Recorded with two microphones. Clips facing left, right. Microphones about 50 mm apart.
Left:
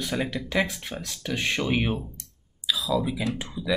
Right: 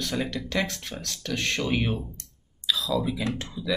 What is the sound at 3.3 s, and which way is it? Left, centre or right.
Speech, centre.